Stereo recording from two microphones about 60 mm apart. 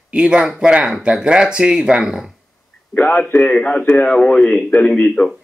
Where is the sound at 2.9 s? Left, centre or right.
Left.